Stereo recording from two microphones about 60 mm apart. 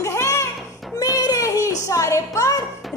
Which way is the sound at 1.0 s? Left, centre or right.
Left.